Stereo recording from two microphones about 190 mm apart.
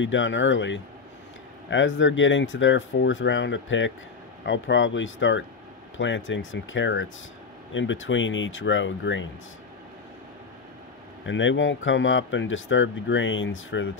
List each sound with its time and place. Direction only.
0.0 s speech: 80° left
11.2 s speech: 80° left